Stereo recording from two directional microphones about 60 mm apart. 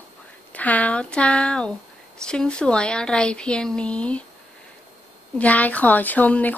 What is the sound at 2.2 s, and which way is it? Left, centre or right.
Speech, centre.